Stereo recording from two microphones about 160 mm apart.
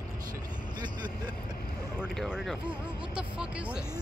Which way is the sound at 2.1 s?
Centre (ahead or behind).